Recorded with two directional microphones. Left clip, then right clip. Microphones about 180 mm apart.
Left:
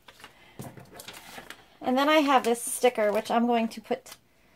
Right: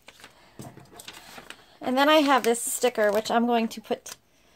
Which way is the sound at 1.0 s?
Centre (ahead or behind).